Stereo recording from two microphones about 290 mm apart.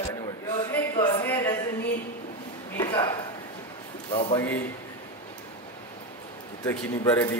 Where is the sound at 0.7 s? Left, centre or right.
Centre.